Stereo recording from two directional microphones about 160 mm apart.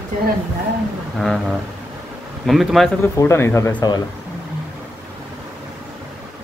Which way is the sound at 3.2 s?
15° left (ahead or behind).